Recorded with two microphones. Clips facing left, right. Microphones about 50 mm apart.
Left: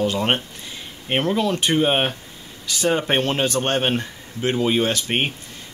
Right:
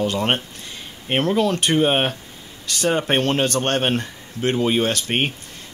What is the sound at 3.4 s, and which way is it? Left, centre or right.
Speech, left.